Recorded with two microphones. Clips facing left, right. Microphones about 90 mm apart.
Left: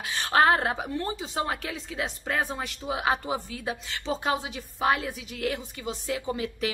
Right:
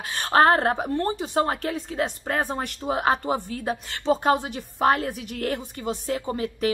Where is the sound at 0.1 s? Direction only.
45° right (ahead or behind).